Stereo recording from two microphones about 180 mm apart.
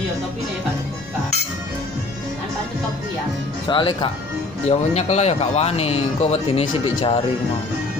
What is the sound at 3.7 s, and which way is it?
Speech, 25° left (ahead or behind).